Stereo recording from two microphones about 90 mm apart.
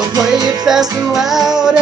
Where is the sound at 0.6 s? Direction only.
5° right (ahead or behind).